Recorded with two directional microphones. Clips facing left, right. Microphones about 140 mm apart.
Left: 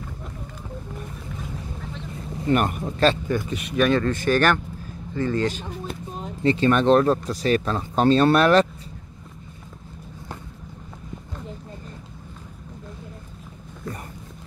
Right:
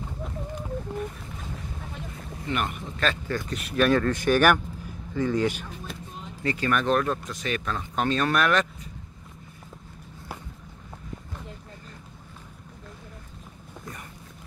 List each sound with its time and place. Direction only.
2.4 s speech: 45° left (ahead or behind)
3.3 s speech: 10° left (ahead or behind)
3.5 s speech: centre (ahead or behind)
4.1 s a man's voice: 10° right (ahead or behind)
6.4 s speech: 25° left (ahead or behind)